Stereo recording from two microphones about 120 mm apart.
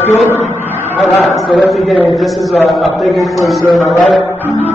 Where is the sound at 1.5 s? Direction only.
5° left (ahead or behind).